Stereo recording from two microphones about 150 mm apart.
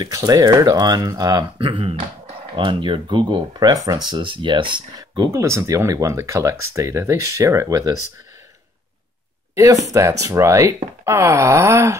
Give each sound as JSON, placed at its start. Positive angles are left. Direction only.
{"t": 0.0, "sound": "speech", "side_deg": -25}
{"t": 9.9, "sound": "speech", "side_deg": -20}